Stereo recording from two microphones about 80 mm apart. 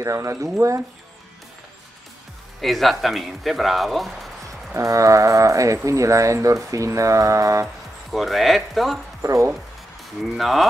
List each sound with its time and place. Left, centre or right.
0.0 s speech: right
2.6 s speech: centre
4.7 s speech: right
7.6 s speech: centre
9.2 s speech: right
10.3 s speech: centre